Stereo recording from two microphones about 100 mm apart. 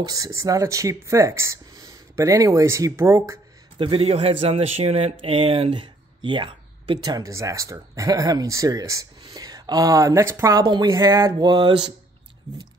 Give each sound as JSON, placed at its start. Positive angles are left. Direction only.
{"t": 0.0, "sound": "speech", "side_deg": -35}
{"t": 3.7, "sound": "speech", "side_deg": -60}
{"t": 7.1, "sound": "speech", "side_deg": -35}
{"t": 10.5, "sound": "speech", "side_deg": -45}